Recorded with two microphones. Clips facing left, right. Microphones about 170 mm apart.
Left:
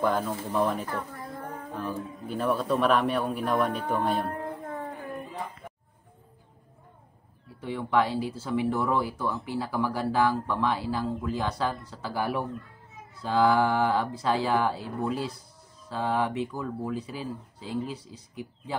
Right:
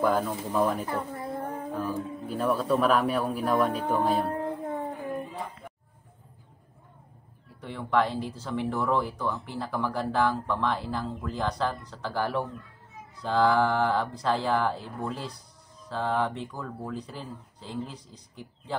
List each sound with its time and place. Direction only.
0.0 s speech: 5° right (ahead or behind)
1.1 s child singing: 25° right (ahead or behind)
1.8 s speech: centre (ahead or behind)
4.3 s a sound: 15° right (ahead or behind)
7.6 s speech: 5° left (ahead or behind)